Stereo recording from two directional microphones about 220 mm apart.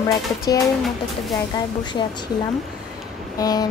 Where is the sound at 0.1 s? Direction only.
15° left (ahead or behind).